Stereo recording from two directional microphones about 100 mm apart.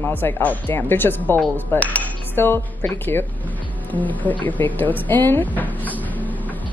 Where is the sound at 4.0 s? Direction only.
15° left (ahead or behind).